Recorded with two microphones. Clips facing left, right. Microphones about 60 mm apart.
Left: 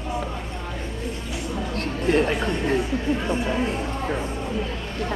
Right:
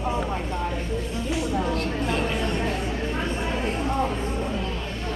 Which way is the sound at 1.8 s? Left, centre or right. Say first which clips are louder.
Left 4 dB; left.